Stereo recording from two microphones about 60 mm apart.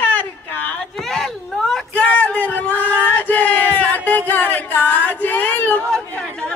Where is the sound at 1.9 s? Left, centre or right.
Left.